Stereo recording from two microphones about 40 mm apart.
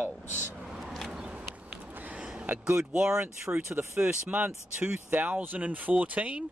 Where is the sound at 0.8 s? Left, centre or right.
Centre.